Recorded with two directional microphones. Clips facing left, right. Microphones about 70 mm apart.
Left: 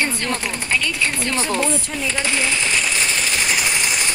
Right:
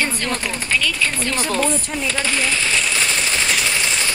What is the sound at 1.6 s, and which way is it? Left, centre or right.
Speech, centre.